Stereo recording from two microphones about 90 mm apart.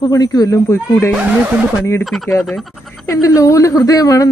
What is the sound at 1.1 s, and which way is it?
Snicker, 15° right (ahead or behind).